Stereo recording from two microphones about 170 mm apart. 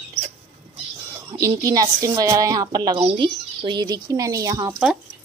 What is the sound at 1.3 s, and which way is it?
Speech, 20° right (ahead or behind).